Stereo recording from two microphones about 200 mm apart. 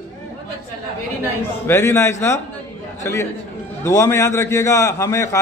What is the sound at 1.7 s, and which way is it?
A man's voice, 10° left (ahead or behind).